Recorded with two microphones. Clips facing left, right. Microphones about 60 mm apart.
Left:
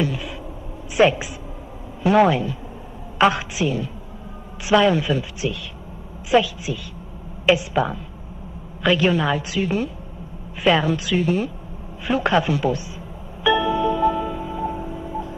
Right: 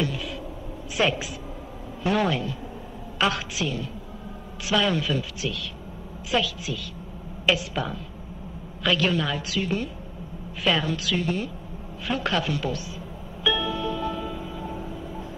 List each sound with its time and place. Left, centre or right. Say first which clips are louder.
0.0 s a woman's voice: left 4 dB; centre
12.1 s speech: left 7 dB; left
13.4 s music: left 7 dB; left